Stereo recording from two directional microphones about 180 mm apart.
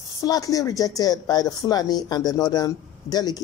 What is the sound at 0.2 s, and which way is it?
A woman's voice, 20° left (ahead or behind).